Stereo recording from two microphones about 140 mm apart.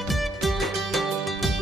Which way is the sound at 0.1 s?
Centre (ahead or behind).